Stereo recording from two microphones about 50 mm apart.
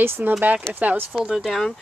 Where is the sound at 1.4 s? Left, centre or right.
Centre.